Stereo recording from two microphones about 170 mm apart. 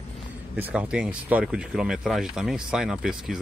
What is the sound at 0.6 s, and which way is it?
Speech, 10° right (ahead or behind).